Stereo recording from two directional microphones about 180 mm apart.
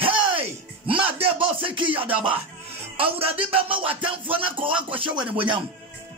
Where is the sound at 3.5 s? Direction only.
30° right (ahead or behind).